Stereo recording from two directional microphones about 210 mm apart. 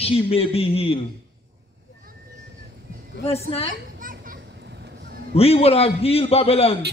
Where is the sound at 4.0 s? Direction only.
40° right (ahead or behind).